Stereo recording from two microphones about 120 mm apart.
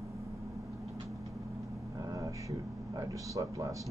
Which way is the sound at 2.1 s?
25° right (ahead or behind).